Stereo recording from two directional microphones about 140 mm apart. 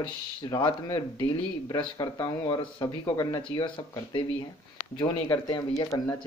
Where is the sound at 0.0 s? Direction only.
35° left (ahead or behind).